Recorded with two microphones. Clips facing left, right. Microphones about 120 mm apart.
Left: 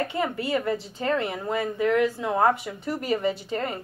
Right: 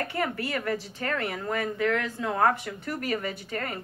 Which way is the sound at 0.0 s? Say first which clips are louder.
Left 3 dB; 20° left (ahead or behind).